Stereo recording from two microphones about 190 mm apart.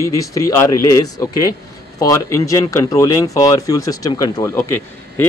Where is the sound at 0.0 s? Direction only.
15° left (ahead or behind).